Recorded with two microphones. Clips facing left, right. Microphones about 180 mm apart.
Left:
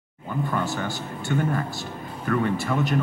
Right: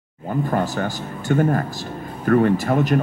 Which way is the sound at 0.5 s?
45° right (ahead or behind).